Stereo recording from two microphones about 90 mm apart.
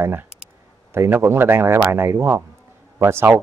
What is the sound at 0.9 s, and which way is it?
A man's voice, 30° right (ahead or behind).